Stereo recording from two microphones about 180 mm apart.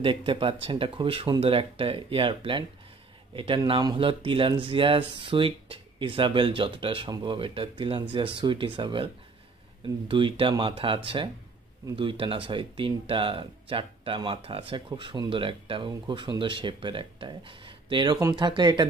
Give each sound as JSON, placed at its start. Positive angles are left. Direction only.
{"t": 0.0, "sound": "speech", "side_deg": -30}